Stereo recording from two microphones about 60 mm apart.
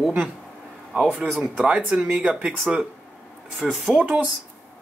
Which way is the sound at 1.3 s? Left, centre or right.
Centre.